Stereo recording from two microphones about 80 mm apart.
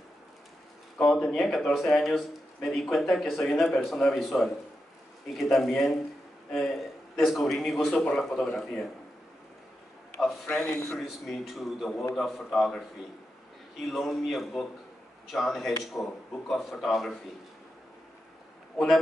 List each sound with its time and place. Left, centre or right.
0.9 s speech: centre
10.2 s speech: centre
10.7 s speech: left
11.0 s speech: centre
13.8 s a man's voice: centre